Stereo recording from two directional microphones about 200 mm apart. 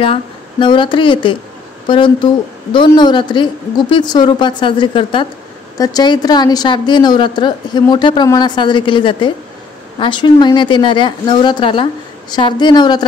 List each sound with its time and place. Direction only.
0.0 s a woman's voice: 25° left (ahead or behind)